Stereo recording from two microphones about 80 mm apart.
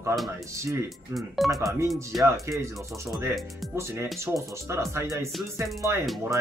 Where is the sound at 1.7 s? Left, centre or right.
Right.